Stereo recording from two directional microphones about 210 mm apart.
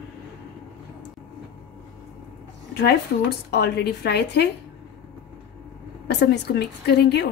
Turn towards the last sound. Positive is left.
turn(degrees=50)  # may be behind; listen again after turning